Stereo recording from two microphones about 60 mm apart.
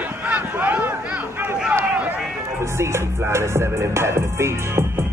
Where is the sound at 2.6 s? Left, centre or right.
Right.